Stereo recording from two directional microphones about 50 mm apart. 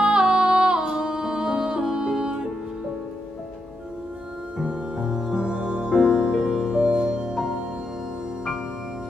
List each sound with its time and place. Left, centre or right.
0.0 s music: centre
4.6 s music: centre